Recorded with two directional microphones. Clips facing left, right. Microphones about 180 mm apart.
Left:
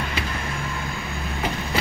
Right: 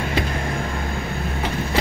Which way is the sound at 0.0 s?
40° right (ahead or behind).